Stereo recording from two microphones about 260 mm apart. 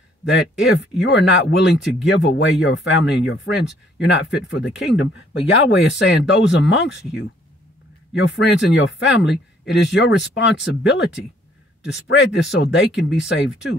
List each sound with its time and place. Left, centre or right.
0.2 s speech: left
8.1 s speech: left